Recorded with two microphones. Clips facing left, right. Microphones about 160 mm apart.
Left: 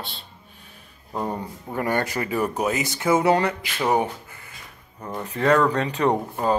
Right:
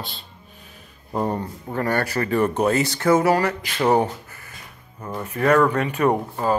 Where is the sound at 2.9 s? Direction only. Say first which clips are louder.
Right 2 dB; 15° left (ahead or behind).